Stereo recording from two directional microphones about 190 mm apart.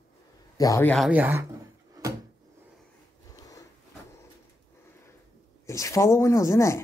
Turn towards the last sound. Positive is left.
turn(degrees=15)  # may be behind; listen again after turning